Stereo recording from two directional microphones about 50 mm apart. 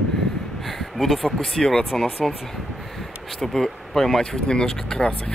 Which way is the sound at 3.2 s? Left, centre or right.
Centre.